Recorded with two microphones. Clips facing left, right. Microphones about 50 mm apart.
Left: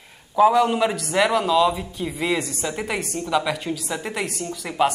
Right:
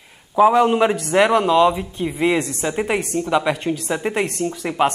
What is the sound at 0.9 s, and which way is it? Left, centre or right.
Speech, centre.